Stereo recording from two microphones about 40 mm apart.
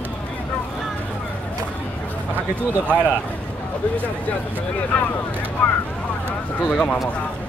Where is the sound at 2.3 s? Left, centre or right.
Right.